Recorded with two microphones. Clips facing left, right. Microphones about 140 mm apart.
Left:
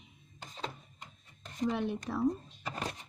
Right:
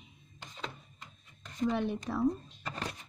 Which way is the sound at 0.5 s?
35° left (ahead or behind).